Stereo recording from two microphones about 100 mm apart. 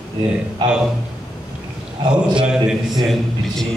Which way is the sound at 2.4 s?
5° right (ahead or behind).